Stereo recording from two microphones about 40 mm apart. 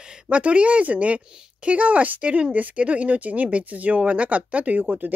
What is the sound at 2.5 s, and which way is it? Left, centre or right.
Speech, right.